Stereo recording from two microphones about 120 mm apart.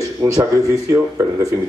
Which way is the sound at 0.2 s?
25° right (ahead or behind).